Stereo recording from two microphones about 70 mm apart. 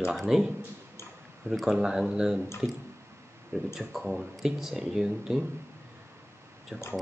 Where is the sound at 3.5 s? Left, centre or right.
Right.